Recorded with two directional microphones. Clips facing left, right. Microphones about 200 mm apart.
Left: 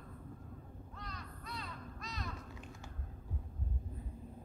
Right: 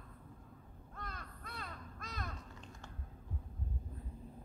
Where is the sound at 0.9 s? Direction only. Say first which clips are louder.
Right 1 dB; 55° right (ahead or behind).